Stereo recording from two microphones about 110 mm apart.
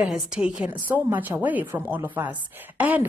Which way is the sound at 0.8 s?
20° right (ahead or behind).